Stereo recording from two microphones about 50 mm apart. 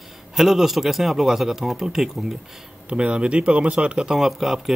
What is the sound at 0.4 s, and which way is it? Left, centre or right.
Speech, centre.